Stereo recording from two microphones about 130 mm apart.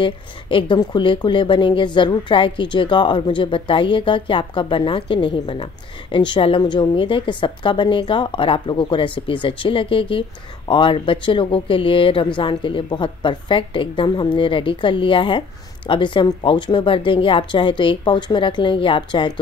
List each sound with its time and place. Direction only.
0.0 s a woman's voice: 40° left (ahead or behind)